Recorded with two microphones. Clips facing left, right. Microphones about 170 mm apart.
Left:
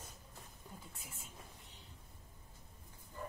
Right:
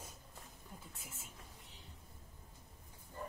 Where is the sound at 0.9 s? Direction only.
Centre (ahead or behind).